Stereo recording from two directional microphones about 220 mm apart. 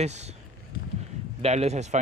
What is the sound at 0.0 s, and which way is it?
Speech, 30° right (ahead or behind).